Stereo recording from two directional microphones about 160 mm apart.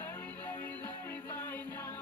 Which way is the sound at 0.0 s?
15° left (ahead or behind).